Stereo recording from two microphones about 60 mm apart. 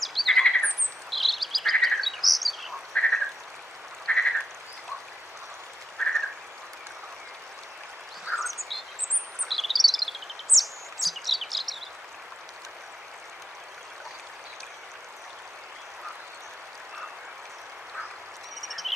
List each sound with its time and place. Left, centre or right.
0.0 s squawk: centre
1.1 s bird vocalization: centre
2.9 s frog: centre
6.0 s frog: centre
8.4 s a sound: centre
9.5 s bird: centre
18.6 s frog: centre